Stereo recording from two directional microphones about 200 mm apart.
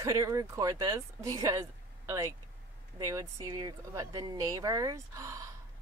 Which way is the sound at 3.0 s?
15° right (ahead or behind).